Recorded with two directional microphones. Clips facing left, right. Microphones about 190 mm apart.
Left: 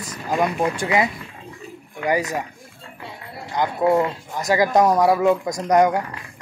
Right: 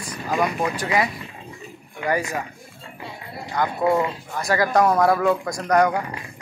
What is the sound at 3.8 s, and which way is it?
Speech, 20° left (ahead or behind).